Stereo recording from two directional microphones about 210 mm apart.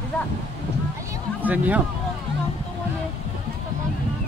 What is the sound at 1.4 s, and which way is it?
Speech, 10° right (ahead or behind).